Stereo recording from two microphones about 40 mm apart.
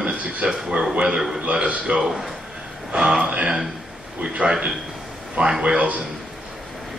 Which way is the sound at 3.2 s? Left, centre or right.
Right.